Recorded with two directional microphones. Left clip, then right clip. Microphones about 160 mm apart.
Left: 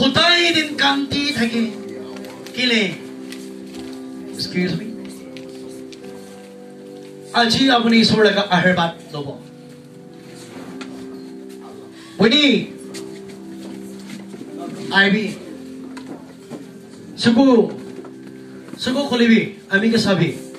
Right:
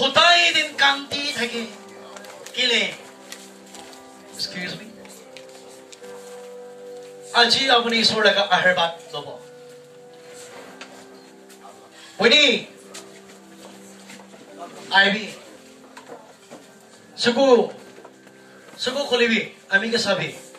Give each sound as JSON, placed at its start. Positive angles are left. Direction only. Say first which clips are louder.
{"t": 0.1, "sound": "music", "louder": "even", "side_deg": 15}
{"t": 2.5, "sound": "a man's voice", "louder": "left 2 dB", "side_deg": 15}
{"t": 4.4, "sound": "music", "louder": "left 5 dB", "side_deg": 15}
{"t": 7.3, "sound": "a man's voice", "louder": "left 1 dB", "side_deg": 5}
{"t": 12.2, "sound": "a man's voice", "louder": "even", "side_deg": 10}
{"t": 14.9, "sound": "a man's voice", "louder": "left 1 dB", "side_deg": 10}
{"t": 17.2, "sound": "a man's voice", "louder": "left 1 dB", "side_deg": 10}
{"t": 18.8, "sound": "a man's voice", "louder": "left 1 dB", "side_deg": 10}